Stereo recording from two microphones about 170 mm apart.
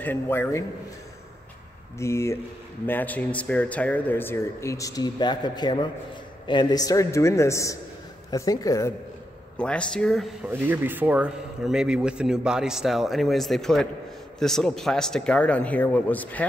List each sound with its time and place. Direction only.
0.0 s speech: 10° left (ahead or behind)
2.0 s a man's voice: 15° left (ahead or behind)
9.6 s speech: 5° left (ahead or behind)
10.5 s speech: 10° right (ahead or behind); by 16.4 s 10° left (ahead or behind)